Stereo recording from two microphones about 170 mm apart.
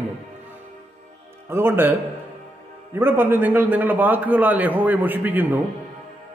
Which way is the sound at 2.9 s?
15° right (ahead or behind).